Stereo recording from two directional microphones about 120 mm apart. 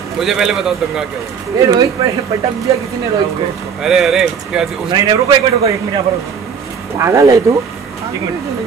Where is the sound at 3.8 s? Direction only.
5° right (ahead or behind).